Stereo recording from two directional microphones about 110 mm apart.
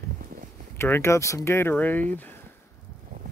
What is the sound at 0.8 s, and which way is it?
Speech, 20° left (ahead or behind).